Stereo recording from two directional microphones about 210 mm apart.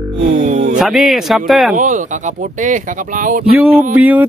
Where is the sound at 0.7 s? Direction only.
Centre (ahead or behind).